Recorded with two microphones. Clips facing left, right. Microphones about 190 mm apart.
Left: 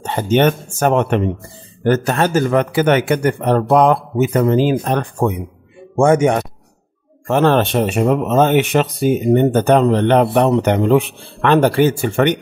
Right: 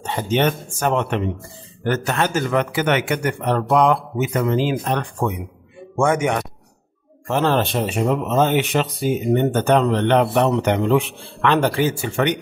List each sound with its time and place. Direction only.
0.0 s a man's voice: 55° left (ahead or behind)
1.9 s a man's voice: 40° left (ahead or behind)
7.2 s speech: 60° left (ahead or behind)
9.3 s a man's voice: 40° left (ahead or behind); by 12.4 s 55° left (ahead or behind)